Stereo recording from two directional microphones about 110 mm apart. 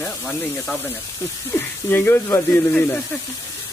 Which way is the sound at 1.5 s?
20° left (ahead or behind).